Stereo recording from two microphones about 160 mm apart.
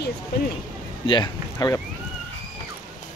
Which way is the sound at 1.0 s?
30° left (ahead or behind).